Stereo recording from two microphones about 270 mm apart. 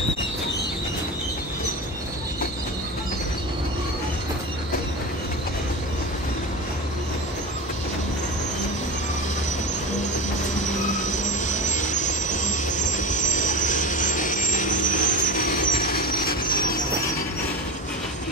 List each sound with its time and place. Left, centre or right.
11.0 s vehicle: left